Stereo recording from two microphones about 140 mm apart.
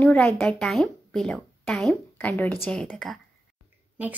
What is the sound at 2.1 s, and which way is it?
A woman's voice, 10° left (ahead or behind).